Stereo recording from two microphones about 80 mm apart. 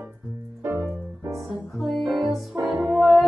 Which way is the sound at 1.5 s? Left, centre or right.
Centre.